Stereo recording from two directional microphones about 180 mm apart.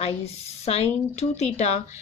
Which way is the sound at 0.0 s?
35° left (ahead or behind).